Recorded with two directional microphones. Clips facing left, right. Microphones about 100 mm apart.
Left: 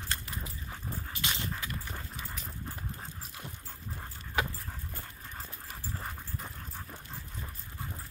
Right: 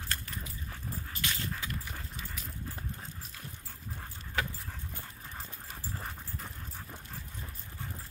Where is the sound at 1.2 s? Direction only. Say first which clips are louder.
Left 1 dB; 20° left (ahead or behind).